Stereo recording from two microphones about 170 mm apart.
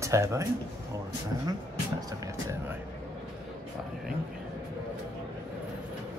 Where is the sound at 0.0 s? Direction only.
15° right (ahead or behind).